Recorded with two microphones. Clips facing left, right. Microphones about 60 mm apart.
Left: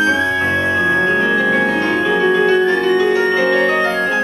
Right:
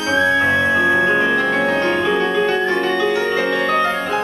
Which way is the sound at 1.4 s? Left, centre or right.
Centre.